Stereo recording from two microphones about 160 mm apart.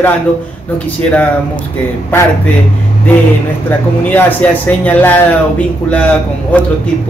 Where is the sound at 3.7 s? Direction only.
10° left (ahead or behind).